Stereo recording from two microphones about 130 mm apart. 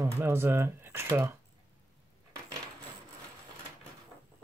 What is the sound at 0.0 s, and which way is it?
Speech, 20° right (ahead or behind).